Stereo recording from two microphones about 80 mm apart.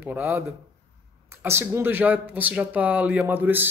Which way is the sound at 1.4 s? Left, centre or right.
Right.